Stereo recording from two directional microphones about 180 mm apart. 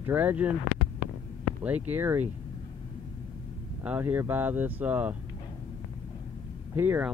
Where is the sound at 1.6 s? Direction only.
10° right (ahead or behind).